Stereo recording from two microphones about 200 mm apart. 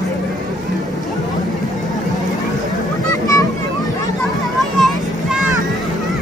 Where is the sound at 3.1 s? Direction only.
15° left (ahead or behind).